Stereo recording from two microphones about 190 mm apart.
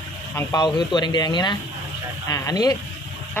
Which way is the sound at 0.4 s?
20° left (ahead or behind).